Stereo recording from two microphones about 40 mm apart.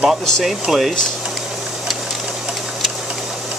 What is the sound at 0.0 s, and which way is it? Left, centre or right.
Speech, centre.